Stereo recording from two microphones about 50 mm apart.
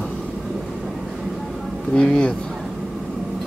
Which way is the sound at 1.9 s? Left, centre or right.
Centre.